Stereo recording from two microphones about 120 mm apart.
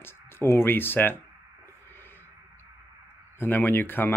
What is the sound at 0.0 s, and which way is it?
Speech, 20° left (ahead or behind).